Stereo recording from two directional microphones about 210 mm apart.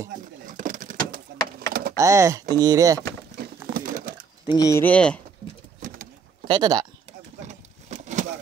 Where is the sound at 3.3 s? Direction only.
40° right (ahead or behind).